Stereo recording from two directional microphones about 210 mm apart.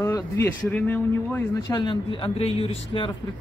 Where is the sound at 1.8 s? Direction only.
25° left (ahead or behind).